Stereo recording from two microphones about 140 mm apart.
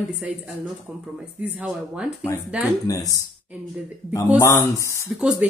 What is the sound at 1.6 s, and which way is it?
Speech, 10° right (ahead or behind).